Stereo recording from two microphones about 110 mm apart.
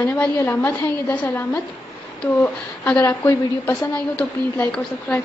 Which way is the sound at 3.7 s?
10° left (ahead or behind).